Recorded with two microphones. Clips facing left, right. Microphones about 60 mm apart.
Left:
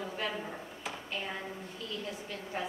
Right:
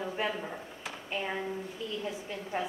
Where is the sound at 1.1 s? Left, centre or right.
Right.